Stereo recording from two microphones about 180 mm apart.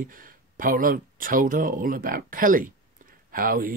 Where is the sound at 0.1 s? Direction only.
50° right (ahead or behind).